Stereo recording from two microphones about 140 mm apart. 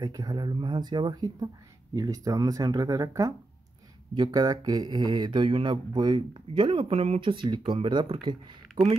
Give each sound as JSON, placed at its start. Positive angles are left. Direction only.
{"t": 0.0, "sound": "speech", "side_deg": -30}